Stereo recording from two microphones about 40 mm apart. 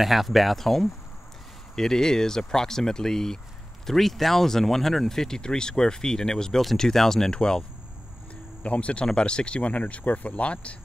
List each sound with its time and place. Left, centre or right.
0.0 s speech: centre
8.6 s speech: left
9.6 s speech: left